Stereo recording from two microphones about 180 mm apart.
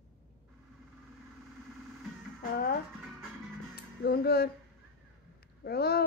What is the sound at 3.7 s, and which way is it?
Music, 60° left (ahead or behind).